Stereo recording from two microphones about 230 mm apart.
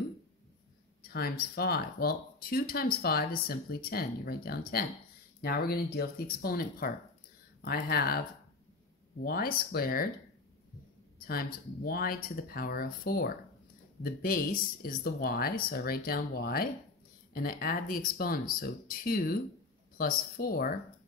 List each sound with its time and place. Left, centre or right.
1.0 s speech: left
9.2 s speech: left
11.1 s speech: left